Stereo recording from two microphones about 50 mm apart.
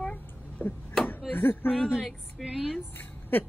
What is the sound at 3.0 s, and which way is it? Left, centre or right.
Speech, left.